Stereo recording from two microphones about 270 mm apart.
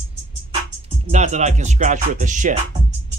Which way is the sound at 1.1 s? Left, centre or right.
Right.